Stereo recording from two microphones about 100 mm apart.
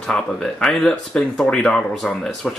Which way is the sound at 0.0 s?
5° left (ahead or behind).